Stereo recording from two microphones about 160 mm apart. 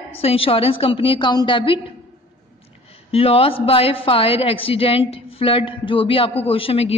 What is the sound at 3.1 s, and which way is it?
A woman's voice, 35° left (ahead or behind).